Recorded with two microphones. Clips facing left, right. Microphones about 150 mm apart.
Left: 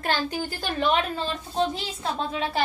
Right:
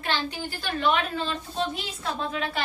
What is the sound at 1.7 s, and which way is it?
Speech, 30° left (ahead or behind).